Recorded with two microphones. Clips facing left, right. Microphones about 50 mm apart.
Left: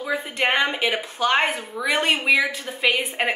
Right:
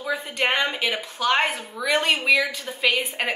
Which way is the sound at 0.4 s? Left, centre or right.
Centre.